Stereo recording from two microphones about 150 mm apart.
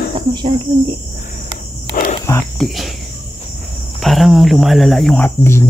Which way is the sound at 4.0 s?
Centre (ahead or behind).